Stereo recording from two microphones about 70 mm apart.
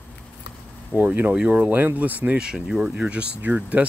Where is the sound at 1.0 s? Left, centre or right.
Right.